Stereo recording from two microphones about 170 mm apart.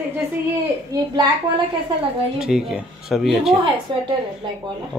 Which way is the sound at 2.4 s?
5° right (ahead or behind).